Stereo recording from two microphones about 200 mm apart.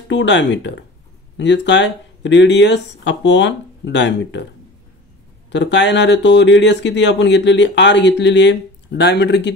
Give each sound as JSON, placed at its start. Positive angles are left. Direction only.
{"t": 0.1, "sound": "speech", "side_deg": 60}
{"t": 5.5, "sound": "speech", "side_deg": 60}